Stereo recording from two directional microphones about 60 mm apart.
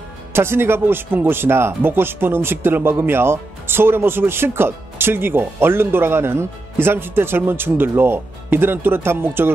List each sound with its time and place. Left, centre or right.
0.3 s speech: right